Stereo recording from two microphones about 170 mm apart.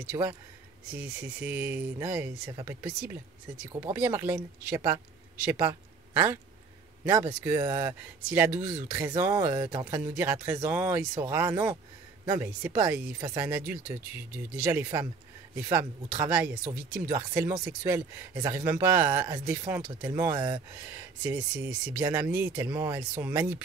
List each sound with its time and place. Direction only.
0.0 s speech: 15° right (ahead or behind)
7.4 s speech: 15° right (ahead or behind)